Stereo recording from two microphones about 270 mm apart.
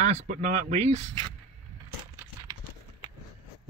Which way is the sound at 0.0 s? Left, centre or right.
Right.